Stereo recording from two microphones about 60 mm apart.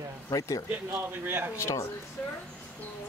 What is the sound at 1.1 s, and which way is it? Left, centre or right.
Speech, right.